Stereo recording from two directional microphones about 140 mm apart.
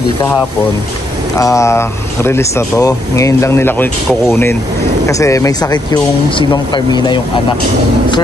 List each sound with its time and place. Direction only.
1.4 s speech: 20° left (ahead or behind)